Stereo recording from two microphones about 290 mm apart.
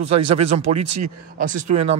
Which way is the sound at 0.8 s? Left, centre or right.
Right.